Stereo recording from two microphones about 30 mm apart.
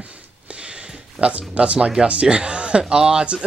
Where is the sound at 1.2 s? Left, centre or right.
Right.